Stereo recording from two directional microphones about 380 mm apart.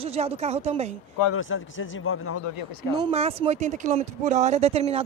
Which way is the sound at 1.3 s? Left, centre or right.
Left.